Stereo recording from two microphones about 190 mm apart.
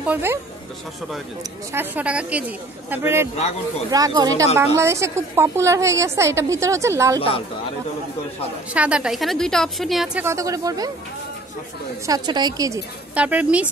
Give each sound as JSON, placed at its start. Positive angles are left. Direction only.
{"t": 0.0, "sound": "a woman's voice", "side_deg": -10}
{"t": 1.7, "sound": "a woman's voice", "side_deg": -10}
{"t": 8.7, "sound": "a woman's voice", "side_deg": -5}
{"t": 12.1, "sound": "a woman's voice", "side_deg": -20}